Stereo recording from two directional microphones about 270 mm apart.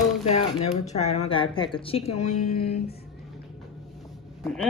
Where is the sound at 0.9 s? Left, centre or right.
Left.